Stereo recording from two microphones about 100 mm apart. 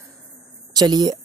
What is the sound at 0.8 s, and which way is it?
Speech, 45° right (ahead or behind).